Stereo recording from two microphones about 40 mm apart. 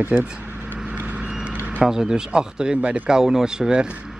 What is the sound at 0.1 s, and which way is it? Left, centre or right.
Speech, right.